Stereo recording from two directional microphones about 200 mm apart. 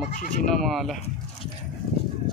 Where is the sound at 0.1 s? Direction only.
40° left (ahead or behind).